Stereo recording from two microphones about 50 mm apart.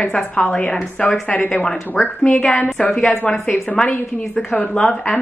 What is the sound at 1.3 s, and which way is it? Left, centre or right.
Speech, left.